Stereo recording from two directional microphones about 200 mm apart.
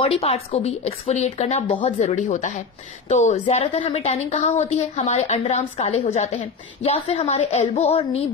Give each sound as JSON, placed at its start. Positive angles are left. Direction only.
{"t": 0.0, "sound": "a woman's voice", "side_deg": 30}